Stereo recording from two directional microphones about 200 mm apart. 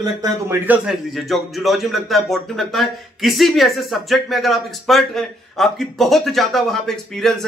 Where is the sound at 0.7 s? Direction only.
Centre (ahead or behind).